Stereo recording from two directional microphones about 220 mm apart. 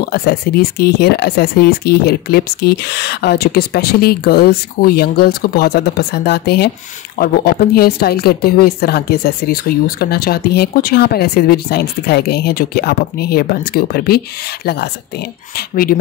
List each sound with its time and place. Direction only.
0.0 s speech: 45° left (ahead or behind)
7.7 s speech: 45° left (ahead or behind)
15.5 s speech: 40° left (ahead or behind)